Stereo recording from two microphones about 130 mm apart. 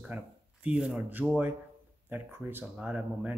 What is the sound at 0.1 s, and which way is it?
Speech, 10° right (ahead or behind).